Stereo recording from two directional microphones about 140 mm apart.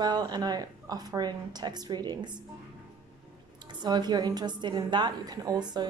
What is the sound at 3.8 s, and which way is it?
Speech, 30° right (ahead or behind).